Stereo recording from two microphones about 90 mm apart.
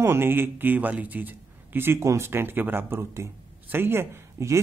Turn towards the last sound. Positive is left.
turn(degrees=-30)  # may be behind; listen again after turning